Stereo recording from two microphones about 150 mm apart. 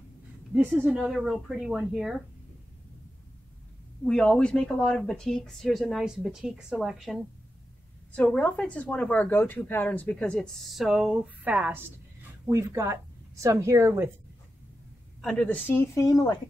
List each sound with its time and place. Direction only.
0.6 s speech: 10° right (ahead or behind)
4.0 s speech: 5° left (ahead or behind); by 11.8 s 10° right (ahead or behind)
12.4 s a woman's voice: 20° right (ahead or behind)
15.2 s speech: 10° left (ahead or behind)